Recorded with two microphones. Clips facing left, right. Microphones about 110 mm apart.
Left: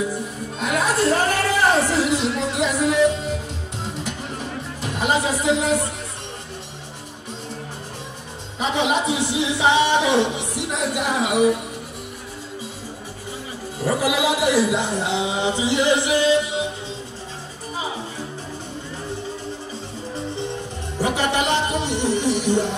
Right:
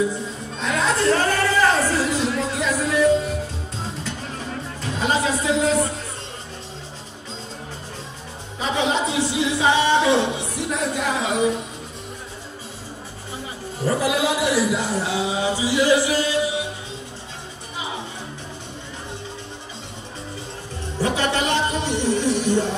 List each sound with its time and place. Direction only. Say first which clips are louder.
0.6 s music: left 1 dB; 15° left (ahead or behind)
8.5 s speech: left 1 dB; 15° left (ahead or behind)
13.8 s speech: even; 15° left (ahead or behind)
21.2 s music: left 1 dB; 15° left (ahead or behind)